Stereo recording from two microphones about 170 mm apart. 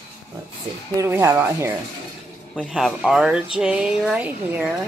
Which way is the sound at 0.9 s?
15° right (ahead or behind).